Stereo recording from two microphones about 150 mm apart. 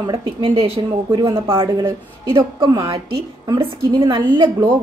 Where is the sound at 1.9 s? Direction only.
15° right (ahead or behind).